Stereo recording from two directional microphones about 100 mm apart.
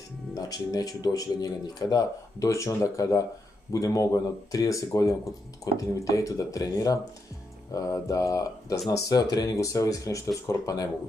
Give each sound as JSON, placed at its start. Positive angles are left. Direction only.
{"t": 0.4, "sound": "speech", "side_deg": 40}